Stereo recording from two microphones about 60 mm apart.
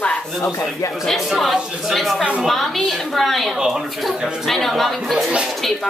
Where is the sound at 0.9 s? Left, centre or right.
Centre.